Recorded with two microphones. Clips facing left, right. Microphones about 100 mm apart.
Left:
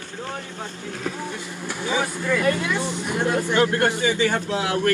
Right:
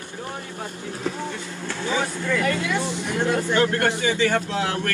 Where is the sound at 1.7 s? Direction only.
15° left (ahead or behind).